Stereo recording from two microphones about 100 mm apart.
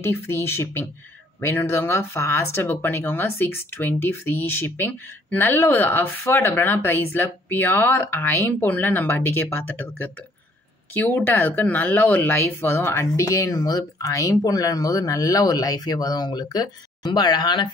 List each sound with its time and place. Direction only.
0.0 s speech: 25° left (ahead or behind); by 17.6 s 45° left (ahead or behind)